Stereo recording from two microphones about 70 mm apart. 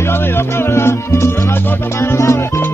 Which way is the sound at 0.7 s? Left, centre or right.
Left.